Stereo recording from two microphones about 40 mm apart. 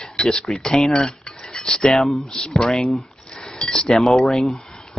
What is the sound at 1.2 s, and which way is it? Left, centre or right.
Cutlery, centre.